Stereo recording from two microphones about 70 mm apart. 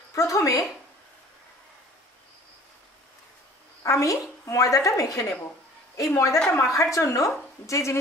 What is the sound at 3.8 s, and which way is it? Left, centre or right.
Speech, left.